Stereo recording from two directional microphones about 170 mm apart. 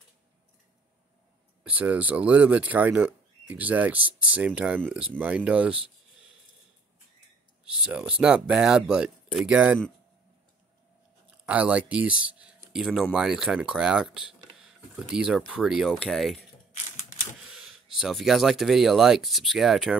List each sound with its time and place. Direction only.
1.6 s speech: 10° right (ahead or behind)
7.6 s speech: 5° right (ahead or behind)
11.4 s speech: 5° right (ahead or behind)
17.5 s speech: centre (ahead or behind)